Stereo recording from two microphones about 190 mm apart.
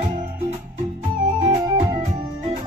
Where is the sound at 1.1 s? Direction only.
45° right (ahead or behind).